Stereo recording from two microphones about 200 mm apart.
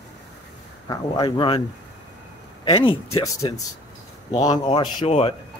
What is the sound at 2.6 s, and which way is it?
Speech, 25° left (ahead or behind).